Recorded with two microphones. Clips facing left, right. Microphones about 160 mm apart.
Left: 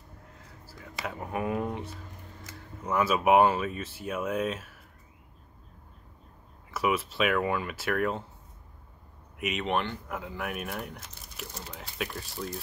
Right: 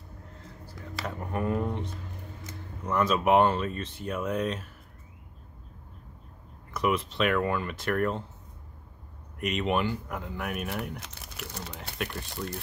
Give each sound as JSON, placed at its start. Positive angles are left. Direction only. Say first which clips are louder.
{"t": 1.0, "sound": "speech", "louder": "right 1 dB", "side_deg": 5}
{"t": 6.7, "sound": "speech", "louder": "right 1 dB", "side_deg": 5}
{"t": 9.4, "sound": "speech", "louder": "right 2 dB", "side_deg": 0}
{"t": 11.0, "sound": "speech", "louder": "right 2 dB", "side_deg": -70}
{"t": 12.0, "sound": "speech", "louder": "right 1 dB", "side_deg": 5}